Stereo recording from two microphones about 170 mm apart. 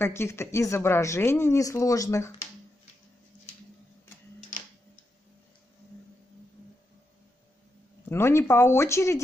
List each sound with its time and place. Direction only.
0.0 s speech: 15° left (ahead or behind)
8.1 s speech: 15° left (ahead or behind)